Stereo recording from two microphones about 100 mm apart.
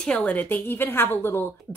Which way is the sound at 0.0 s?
15° left (ahead or behind).